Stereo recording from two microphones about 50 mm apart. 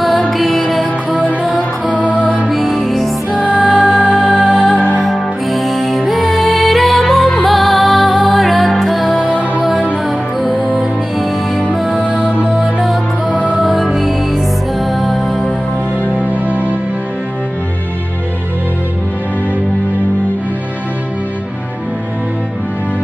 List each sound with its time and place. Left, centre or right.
0.3 s music: centre
3.4 s music: centre
3.7 s music: centre
10.4 s music: centre
13.3 s music: right
13.6 s music: centre
16.2 s music: right